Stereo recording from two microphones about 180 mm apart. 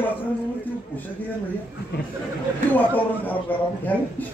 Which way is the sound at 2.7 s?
10° left (ahead or behind).